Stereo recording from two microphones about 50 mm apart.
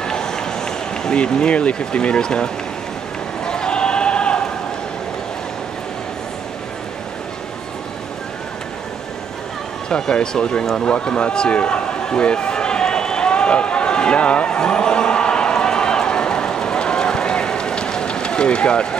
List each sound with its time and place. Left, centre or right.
0.0 s run: centre
3.4 s a sound: centre
9.8 s speech: centre
10.8 s run: left